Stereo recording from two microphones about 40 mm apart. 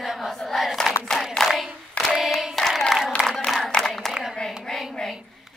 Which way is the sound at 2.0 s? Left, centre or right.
Left.